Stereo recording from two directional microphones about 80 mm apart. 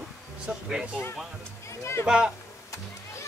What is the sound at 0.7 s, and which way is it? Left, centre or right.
Speech, centre.